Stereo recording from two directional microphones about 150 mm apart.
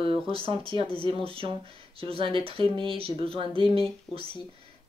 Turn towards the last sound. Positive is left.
turn(degrees=-35)  # may be behind; listen again after turning